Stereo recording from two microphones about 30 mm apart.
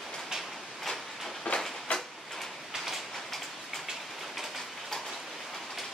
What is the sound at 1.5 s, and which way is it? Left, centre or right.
Train, left.